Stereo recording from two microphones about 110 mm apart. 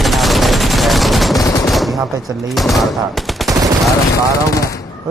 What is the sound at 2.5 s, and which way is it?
Gunshot, centre (ahead or behind).